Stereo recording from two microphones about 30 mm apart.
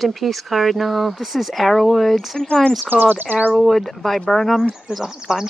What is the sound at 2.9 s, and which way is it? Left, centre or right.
Speech, right.